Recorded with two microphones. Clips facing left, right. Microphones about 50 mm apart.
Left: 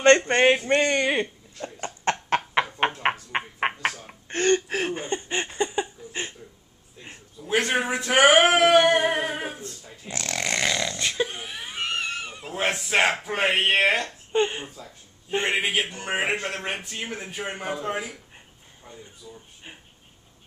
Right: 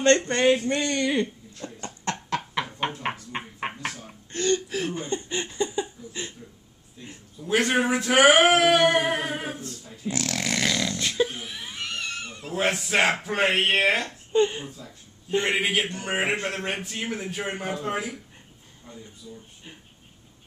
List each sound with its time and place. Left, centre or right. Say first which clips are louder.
0.0 s speech: left 3 dB; left
1.2 s a sound: right 1 dB; left
2.2 s a sound: left 5 dB; left
7.4 s a man's voice: right 1 dB; centre
8.5 s singing: left 1 dB; centre
10.0 s snoring: right 1 dB; centre
10.9 s wheeze: right 1 dB; centre
12.7 s a man's voice: even; centre
14.3 s speech: right 2 dB; left
15.5 s a man's voice: even; centre
19.2 s speech: right 1 dB; left